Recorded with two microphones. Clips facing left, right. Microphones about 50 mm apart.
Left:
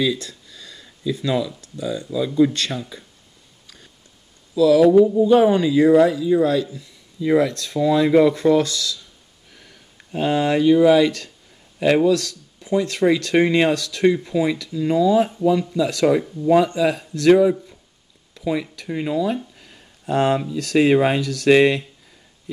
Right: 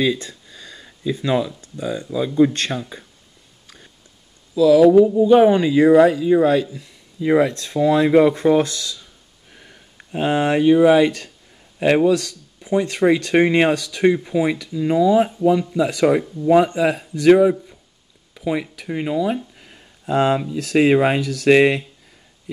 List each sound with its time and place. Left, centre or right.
0.0 s speech: right
0.3 s a sound: right
2.1 s speech: right
4.6 s speech: centre; by 9.0 s right
9.5 s a sound: centre
10.2 s speech: right
17.0 s speech: centre
18.3 s a sound: centre
20.4 s speech: right